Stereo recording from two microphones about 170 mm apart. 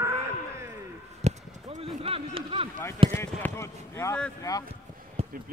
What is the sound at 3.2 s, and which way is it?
Speech, 15° left (ahead or behind).